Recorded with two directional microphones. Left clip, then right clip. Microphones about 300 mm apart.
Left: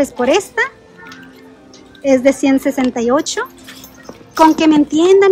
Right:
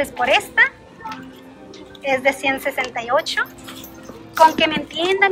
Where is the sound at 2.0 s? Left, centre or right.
Left.